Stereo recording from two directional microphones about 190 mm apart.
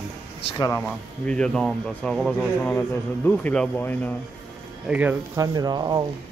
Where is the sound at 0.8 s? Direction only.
5° left (ahead or behind).